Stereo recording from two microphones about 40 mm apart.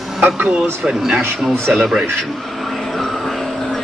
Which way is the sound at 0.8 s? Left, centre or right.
Centre.